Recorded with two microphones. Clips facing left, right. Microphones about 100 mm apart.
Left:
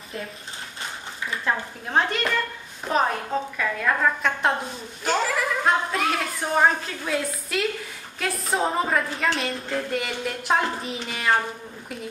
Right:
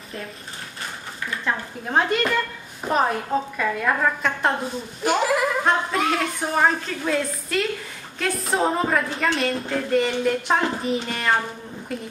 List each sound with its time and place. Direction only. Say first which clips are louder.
1.4 s a woman's voice: even; 5° right (ahead or behind)
4.2 s a woman's voice: right 1 dB; centre (ahead or behind)
5.0 s a woman's voice: right 3 dB; 15° right (ahead or behind)
5.7 s a woman's voice: left 1 dB; centre (ahead or behind)